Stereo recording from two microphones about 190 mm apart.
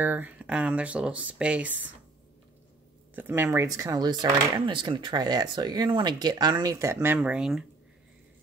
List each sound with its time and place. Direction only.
0.0 s speech: 10° right (ahead or behind)
3.2 s speech: 10° right (ahead or behind)